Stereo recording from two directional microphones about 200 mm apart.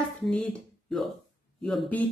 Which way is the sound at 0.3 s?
5° left (ahead or behind).